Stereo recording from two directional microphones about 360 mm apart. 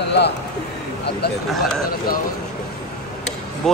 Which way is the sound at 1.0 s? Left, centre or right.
Left.